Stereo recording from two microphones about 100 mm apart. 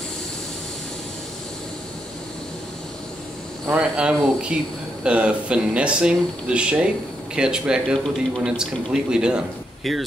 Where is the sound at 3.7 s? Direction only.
10° right (ahead or behind).